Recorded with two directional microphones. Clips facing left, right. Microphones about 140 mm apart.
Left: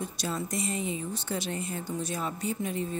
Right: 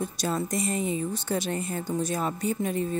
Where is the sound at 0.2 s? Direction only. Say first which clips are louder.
Right 4 dB; 50° right (ahead or behind).